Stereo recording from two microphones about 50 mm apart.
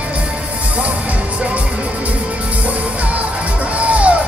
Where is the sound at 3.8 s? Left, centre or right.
Right.